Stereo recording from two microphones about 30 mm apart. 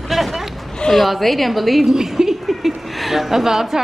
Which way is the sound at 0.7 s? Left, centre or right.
Centre.